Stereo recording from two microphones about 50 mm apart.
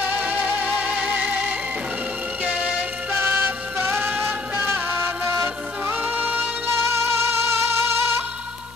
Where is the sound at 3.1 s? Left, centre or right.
Right.